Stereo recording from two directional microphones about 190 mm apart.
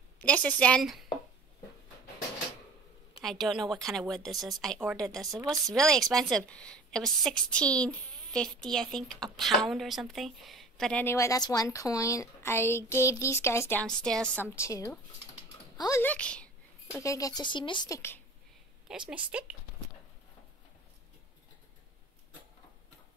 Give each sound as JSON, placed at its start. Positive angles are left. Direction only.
{"t": 0.2, "sound": "speech", "side_deg": 5}
{"t": 3.2, "sound": "a woman's voice", "side_deg": 0}
{"t": 17.0, "sound": "speech", "side_deg": 15}
{"t": 18.9, "sound": "a woman's voice", "side_deg": -5}